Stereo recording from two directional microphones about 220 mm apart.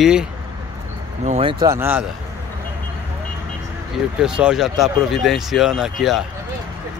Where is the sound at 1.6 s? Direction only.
10° right (ahead or behind).